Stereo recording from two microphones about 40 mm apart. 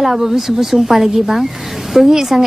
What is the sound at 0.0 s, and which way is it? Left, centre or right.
A woman's voice, centre.